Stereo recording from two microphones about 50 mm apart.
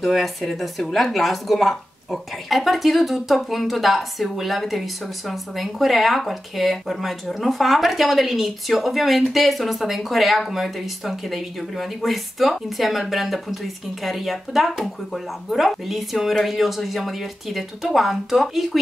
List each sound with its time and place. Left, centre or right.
0.0 s a woman's voice: centre